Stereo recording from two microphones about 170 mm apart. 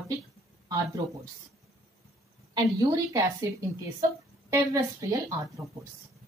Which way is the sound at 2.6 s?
20° right (ahead or behind).